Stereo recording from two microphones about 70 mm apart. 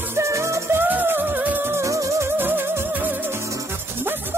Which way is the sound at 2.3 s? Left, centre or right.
Right.